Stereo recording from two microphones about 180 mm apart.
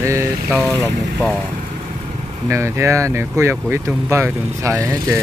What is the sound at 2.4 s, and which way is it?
Speech, 15° right (ahead or behind).